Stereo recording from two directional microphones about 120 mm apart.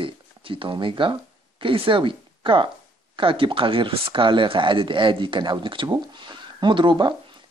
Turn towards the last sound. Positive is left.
turn(degrees=-40)  # may be behind; listen again after turning